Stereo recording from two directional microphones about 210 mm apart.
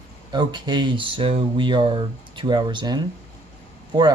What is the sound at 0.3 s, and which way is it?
Speech, 20° right (ahead or behind).